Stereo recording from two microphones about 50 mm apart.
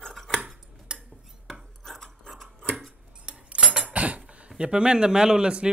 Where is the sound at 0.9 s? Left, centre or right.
Centre.